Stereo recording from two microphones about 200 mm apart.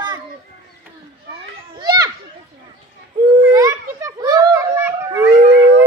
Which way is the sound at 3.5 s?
15° right (ahead or behind).